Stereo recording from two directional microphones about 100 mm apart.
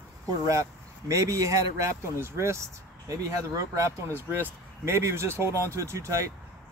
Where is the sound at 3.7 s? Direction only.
30° right (ahead or behind).